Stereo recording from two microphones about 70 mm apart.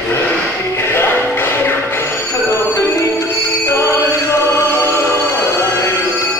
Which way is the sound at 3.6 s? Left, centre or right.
Left.